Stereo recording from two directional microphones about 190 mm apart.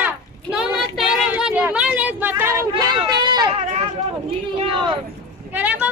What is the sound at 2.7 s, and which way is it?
Speech, 25° right (ahead or behind).